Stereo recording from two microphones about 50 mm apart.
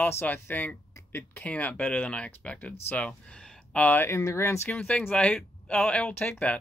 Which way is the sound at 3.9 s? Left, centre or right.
Left.